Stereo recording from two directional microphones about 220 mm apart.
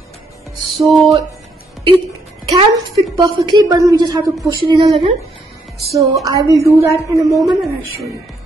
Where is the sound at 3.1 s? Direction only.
20° right (ahead or behind).